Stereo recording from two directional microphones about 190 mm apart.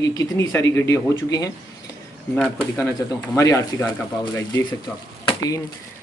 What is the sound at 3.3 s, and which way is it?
Speech, 15° left (ahead or behind).